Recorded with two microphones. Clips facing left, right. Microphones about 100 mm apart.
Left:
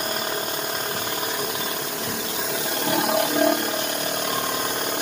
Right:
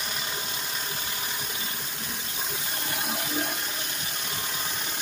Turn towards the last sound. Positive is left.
turn(degrees=75)  # may be behind; listen again after turning